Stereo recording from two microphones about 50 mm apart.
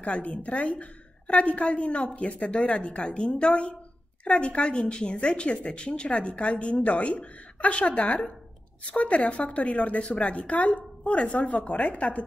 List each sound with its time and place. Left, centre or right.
0.0 s a woman's voice: left